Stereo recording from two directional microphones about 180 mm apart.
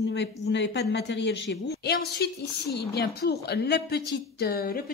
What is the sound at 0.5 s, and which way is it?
A woman's voice, 70° left (ahead or behind).